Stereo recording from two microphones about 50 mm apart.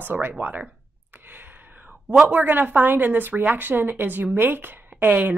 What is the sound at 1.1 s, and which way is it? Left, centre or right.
Gasp, right.